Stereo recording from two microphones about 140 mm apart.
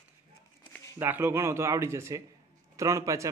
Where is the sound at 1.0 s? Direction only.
15° right (ahead or behind).